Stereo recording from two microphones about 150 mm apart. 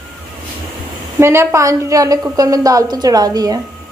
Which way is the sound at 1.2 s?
15° right (ahead or behind).